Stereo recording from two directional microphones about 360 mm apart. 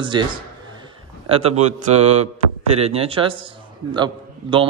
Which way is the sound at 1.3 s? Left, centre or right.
Centre.